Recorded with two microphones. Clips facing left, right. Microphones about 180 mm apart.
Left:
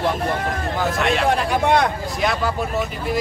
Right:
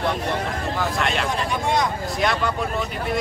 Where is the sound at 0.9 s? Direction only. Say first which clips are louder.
Left 5 dB; centre (ahead or behind).